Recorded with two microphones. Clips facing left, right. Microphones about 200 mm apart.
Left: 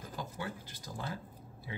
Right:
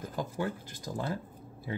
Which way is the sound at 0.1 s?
45° right (ahead or behind).